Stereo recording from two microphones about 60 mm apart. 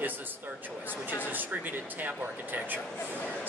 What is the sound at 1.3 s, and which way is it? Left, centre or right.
Speech, right.